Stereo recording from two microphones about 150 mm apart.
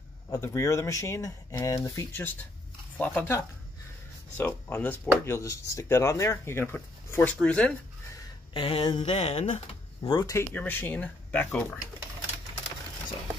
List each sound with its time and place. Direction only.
0.3 s speech: 20° left (ahead or behind)
4.4 s speech: 10° left (ahead or behind)
7.2 s speech: 5° left (ahead or behind)
8.5 s speech: 40° left (ahead or behind)
10.1 s speech: 25° left (ahead or behind)
10.5 s speech: 10° left (ahead or behind)